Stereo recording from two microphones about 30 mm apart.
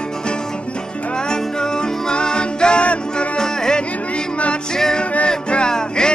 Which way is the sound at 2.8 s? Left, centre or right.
Left.